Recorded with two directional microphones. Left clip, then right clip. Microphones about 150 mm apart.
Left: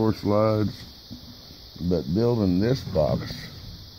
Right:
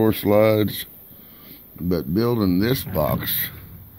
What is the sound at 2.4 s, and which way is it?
Speech, 30° left (ahead or behind).